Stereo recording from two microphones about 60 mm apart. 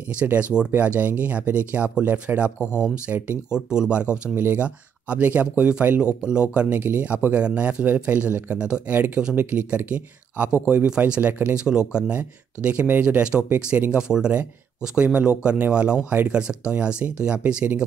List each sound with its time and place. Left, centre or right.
0.2 s speech: right
3.5 s speech: centre
4.4 s speech: right
6.8 s speech: right; by 8.8 s centre
8.8 s speech: right